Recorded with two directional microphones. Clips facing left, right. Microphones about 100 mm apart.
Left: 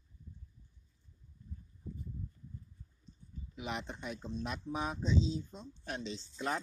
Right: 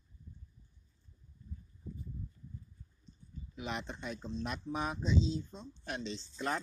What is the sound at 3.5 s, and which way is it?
Speech, 5° left (ahead or behind).